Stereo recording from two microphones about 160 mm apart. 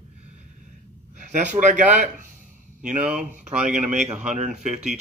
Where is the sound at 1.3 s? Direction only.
50° right (ahead or behind).